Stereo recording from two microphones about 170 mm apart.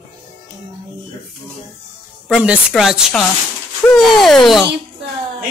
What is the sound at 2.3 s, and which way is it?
Speech, 5° right (ahead or behind).